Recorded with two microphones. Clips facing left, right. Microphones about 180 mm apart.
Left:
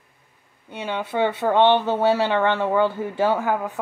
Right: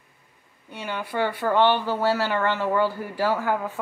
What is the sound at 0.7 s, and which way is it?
Speech, 20° left (ahead or behind).